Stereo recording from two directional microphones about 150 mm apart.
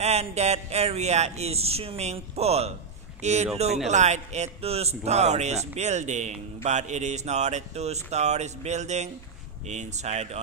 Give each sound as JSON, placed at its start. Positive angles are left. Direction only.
{"t": 0.0, "sound": "speech", "side_deg": -45}